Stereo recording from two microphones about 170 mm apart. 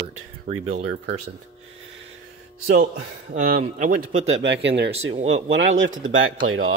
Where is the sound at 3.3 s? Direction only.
50° right (ahead or behind).